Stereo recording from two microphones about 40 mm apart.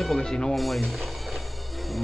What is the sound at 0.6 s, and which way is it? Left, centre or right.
Speech, centre.